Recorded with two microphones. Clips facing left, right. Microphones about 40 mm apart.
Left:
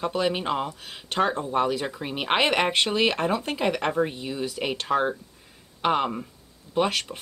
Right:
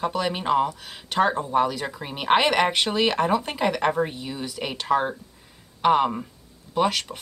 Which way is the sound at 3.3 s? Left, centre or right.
Centre.